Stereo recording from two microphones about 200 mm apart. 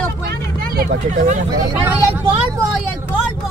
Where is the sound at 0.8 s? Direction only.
35° right (ahead or behind).